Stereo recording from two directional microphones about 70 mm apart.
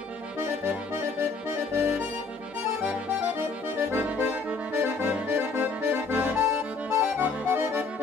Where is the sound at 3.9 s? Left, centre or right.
Right.